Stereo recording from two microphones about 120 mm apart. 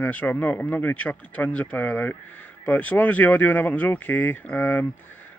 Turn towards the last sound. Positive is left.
turn(degrees=15)  # may be behind; listen again after turning